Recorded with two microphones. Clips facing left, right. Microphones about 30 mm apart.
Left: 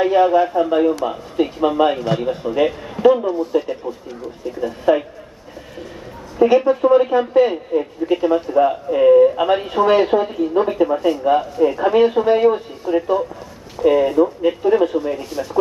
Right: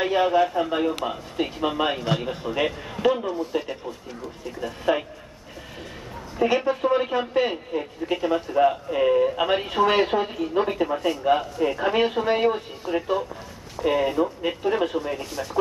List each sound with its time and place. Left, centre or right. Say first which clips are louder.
0.0 s speech: left 6 dB; centre
6.3 s speech: left 8 dB; centre